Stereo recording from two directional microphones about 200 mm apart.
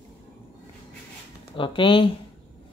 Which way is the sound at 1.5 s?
25° left (ahead or behind).